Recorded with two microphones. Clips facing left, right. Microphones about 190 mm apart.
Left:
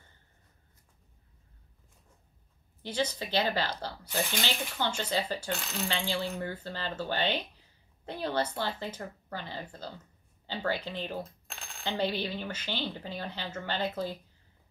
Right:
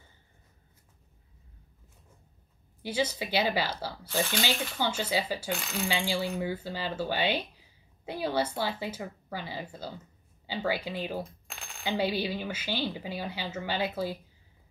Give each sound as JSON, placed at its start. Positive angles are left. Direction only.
{"t": 2.8, "sound": "speech", "side_deg": -10}